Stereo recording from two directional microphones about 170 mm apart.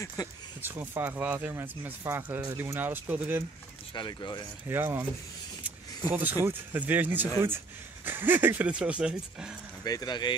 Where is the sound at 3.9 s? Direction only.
25° left (ahead or behind).